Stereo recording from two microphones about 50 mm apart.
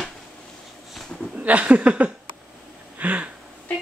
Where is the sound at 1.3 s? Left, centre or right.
Right.